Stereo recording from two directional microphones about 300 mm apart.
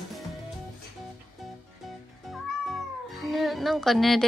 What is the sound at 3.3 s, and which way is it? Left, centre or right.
Speech, centre.